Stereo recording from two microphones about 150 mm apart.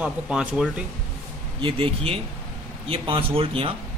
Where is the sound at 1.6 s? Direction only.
35° right (ahead or behind).